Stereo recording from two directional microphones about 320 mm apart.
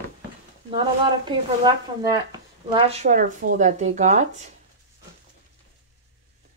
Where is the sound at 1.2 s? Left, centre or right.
Centre.